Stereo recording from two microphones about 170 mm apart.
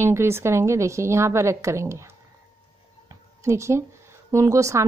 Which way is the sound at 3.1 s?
15° right (ahead or behind).